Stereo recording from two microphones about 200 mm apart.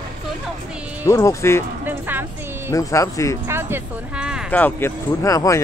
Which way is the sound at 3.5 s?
10° right (ahead or behind).